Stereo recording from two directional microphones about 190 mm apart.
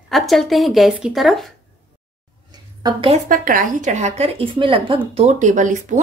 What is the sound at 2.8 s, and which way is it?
Speech, 25° right (ahead or behind).